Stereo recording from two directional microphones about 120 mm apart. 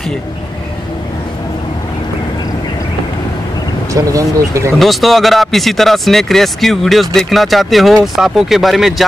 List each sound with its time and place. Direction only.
3.9 s speech: 25° right (ahead or behind)
4.7 s speech: centre (ahead or behind)